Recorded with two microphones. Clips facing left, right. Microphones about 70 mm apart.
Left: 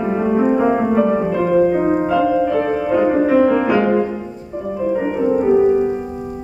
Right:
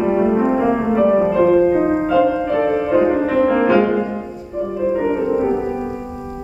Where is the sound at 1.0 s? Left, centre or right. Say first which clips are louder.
Right 3 dB; centre.